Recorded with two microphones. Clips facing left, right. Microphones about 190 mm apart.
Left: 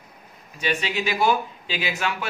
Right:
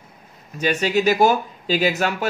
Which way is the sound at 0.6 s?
45° right (ahead or behind).